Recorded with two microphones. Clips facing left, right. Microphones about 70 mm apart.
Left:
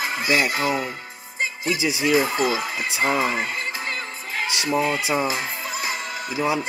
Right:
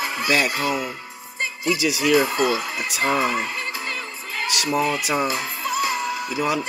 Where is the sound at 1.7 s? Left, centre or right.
Left.